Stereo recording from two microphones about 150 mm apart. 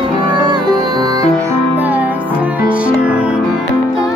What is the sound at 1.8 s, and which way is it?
Music, 10° right (ahead or behind).